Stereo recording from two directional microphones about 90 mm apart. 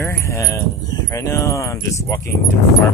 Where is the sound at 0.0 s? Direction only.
30° left (ahead or behind).